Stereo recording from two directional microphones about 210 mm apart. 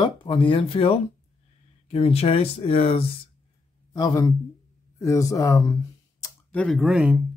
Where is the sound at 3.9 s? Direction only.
15° left (ahead or behind).